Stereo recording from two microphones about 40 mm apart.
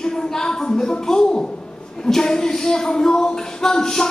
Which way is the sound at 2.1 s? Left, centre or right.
Centre.